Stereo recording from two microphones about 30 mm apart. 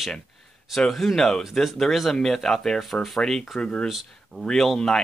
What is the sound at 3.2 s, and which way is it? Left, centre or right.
Speech, left.